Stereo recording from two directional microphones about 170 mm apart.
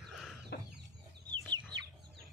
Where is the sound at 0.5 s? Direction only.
75° left (ahead or behind).